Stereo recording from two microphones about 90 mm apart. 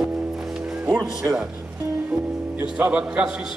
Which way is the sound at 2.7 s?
10° right (ahead or behind).